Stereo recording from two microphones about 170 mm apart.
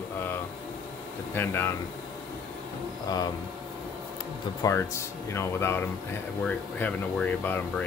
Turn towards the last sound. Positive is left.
turn(degrees=10)  # may be behind; listen again after turning